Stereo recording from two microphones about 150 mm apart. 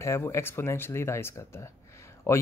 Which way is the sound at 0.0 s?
20° left (ahead or behind).